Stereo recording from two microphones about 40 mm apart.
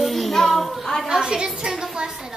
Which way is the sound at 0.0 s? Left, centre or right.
Centre.